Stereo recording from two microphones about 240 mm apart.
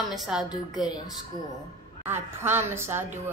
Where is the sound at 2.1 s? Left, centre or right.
Centre.